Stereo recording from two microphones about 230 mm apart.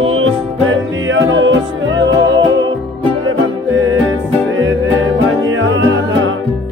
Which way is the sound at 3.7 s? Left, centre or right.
Right.